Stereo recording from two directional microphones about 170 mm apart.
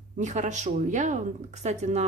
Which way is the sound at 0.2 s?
45° right (ahead or behind).